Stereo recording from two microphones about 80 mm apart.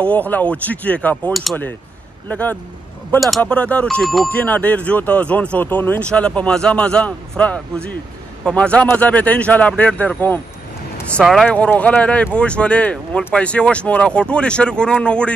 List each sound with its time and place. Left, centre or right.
0.0 s speech: centre
1.3 s speech: centre
2.2 s speech: left
3.2 s speech: centre
3.4 s speech: centre
4.0 s speech: centre
4.3 s speech: centre
6.0 s speech: centre
11.4 s speech: centre